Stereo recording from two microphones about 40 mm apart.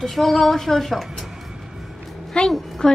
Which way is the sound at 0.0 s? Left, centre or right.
Centre.